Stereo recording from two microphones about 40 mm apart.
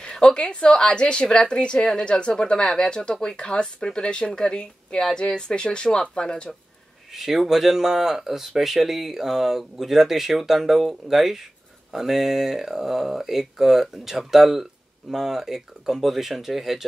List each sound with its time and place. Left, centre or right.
0.0 s a woman's voice: left
7.2 s speech: centre